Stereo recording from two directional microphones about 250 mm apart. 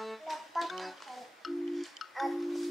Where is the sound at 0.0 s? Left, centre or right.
Centre.